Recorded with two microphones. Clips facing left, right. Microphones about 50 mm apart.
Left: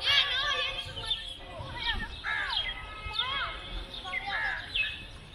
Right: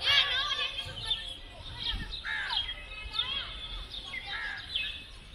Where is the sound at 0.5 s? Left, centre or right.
Centre.